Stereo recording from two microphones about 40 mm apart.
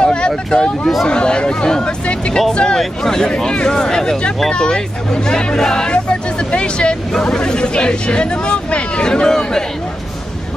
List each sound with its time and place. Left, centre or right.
0.0 s vehicle: left
0.5 s speech: centre